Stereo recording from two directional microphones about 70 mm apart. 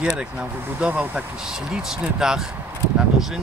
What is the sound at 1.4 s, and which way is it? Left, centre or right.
Speech, centre.